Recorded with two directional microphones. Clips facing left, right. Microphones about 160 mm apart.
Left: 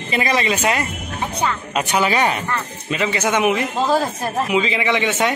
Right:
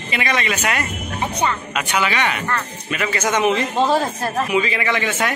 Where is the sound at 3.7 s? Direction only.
Centre (ahead or behind).